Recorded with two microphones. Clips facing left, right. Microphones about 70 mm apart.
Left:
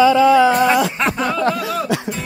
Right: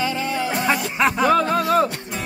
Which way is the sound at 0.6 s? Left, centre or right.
Centre.